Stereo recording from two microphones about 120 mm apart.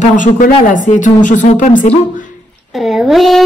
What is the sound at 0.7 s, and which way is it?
A woman's voice, 90° left.